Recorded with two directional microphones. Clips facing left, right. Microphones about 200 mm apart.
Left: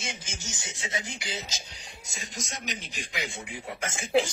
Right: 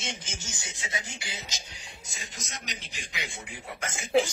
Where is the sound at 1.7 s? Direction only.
40° left (ahead or behind).